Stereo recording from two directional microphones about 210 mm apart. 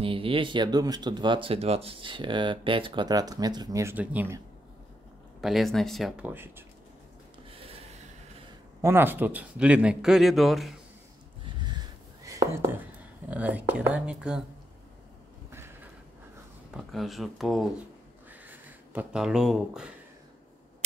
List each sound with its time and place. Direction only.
0.0 s speech: 25° right (ahead or behind); by 4.4 s 10° right (ahead or behind)
5.4 s speech: centre (ahead or behind)
8.8 s speech: 10° right (ahead or behind)
12.2 s whispering: 15° right (ahead or behind)
13.3 s speech: 5° right (ahead or behind)
15.5 s a sound: 10° right (ahead or behind)
16.7 s speech: centre (ahead or behind)
18.3 s a sound: 10° right (ahead or behind)